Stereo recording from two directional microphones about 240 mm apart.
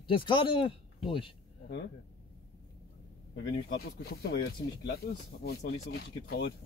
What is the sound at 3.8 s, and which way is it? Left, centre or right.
Speech, left.